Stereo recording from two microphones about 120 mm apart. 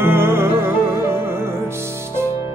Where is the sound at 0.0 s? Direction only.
20° right (ahead or behind).